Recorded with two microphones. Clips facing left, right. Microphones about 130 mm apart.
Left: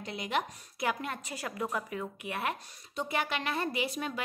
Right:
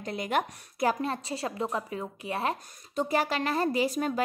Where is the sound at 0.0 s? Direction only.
45° right (ahead or behind).